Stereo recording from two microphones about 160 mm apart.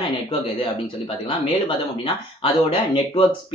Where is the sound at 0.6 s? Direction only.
30° left (ahead or behind).